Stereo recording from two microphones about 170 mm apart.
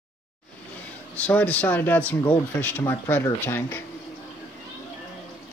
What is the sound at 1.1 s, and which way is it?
Speech, 10° left (ahead or behind).